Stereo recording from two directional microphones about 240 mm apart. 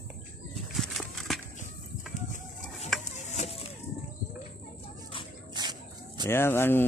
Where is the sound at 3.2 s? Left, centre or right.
Left.